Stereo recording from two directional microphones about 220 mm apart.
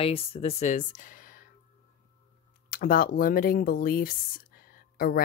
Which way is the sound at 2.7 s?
40° left (ahead or behind).